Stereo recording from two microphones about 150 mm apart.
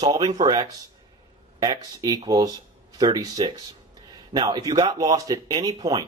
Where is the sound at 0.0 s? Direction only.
25° right (ahead or behind).